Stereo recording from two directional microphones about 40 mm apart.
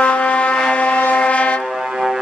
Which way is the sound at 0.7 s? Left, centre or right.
Left.